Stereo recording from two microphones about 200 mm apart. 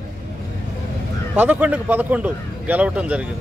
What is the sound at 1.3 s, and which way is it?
Speech, 10° right (ahead or behind).